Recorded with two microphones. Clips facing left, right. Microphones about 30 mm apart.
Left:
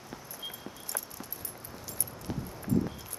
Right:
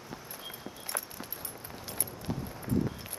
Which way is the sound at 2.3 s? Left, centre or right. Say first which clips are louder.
Right 1 dB; centre.